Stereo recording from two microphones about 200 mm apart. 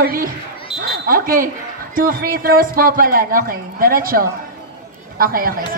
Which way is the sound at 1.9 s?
45° right (ahead or behind).